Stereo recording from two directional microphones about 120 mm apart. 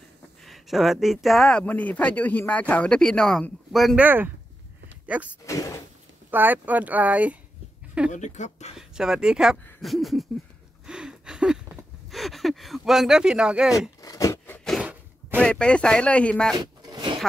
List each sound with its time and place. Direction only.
0.5 s speech: centre (ahead or behind)
4.0 s speech: 15° right (ahead or behind)
5.4 s a sound: 25° left (ahead or behind)
6.3 s speech: 15° right (ahead or behind)
8.1 s speech: 80° left
8.7 s speech: 5° right (ahead or behind)
10.9 s a sound: 5° right (ahead or behind)
12.1 s speech: centre (ahead or behind)
13.7 s speech: 30° left (ahead or behind)
14.4 s zipper: 15° left (ahead or behind)
15.4 s speech: 10° left (ahead or behind)
16.5 s a sound: 35° right (ahead or behind)